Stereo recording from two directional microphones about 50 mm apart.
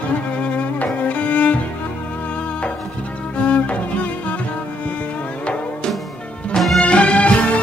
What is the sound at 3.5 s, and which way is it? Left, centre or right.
Music, left.